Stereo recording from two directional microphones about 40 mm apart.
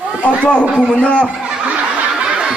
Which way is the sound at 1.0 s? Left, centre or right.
Left.